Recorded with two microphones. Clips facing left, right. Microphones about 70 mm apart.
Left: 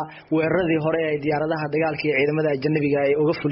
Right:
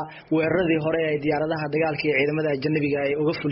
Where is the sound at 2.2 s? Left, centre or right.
Left.